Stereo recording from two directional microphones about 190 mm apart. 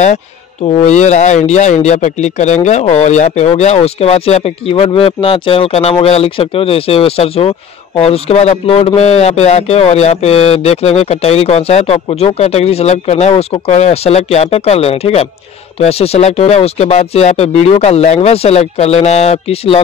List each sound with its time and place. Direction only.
0.8 s speech: 40° left (ahead or behind)